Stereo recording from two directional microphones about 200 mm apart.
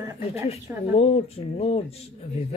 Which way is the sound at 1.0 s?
30° left (ahead or behind).